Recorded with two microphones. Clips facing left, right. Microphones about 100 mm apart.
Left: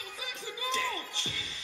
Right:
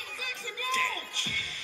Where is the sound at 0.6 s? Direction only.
20° left (ahead or behind).